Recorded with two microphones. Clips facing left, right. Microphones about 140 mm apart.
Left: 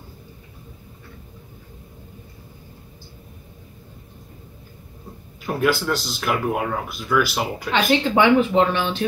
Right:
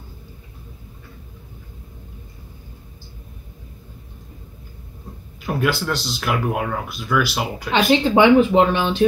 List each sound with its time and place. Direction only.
5.5 s speech: centre (ahead or behind)
7.7 s speech: 15° right (ahead or behind)